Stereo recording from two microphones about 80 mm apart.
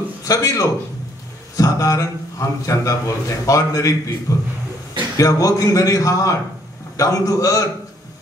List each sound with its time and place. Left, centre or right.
0.2 s a man's voice: left